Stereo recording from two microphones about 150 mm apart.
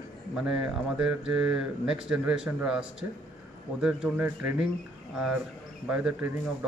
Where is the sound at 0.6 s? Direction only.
5° right (ahead or behind).